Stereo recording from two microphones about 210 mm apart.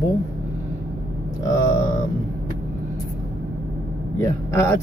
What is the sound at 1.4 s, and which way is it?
Speech, 15° left (ahead or behind).